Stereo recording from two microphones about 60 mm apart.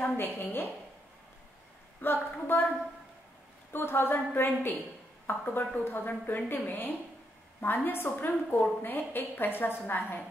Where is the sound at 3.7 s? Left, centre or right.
Left.